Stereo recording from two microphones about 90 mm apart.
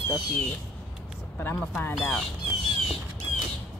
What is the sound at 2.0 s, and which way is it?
Speech, 5° left (ahead or behind).